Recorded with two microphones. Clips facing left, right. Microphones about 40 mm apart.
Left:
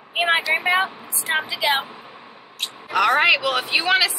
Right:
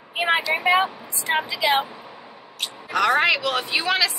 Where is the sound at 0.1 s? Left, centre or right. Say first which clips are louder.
Left 2 dB; centre.